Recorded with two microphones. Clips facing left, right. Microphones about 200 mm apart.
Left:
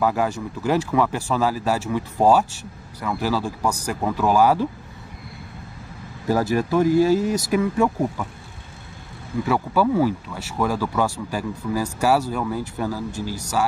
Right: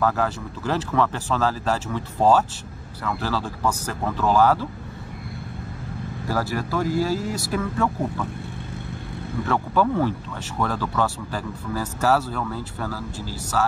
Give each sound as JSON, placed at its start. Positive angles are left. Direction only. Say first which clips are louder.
{"t": 0.0, "sound": "speech", "louder": "left 1 dB", "side_deg": 15}
{"t": 6.3, "sound": "speech", "louder": "left 6 dB", "side_deg": 20}
{"t": 9.5, "sound": "speech", "louder": "left 2 dB", "side_deg": 10}